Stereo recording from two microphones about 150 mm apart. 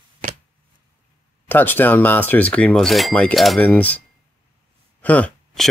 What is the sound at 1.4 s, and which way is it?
Speech, 15° left (ahead or behind).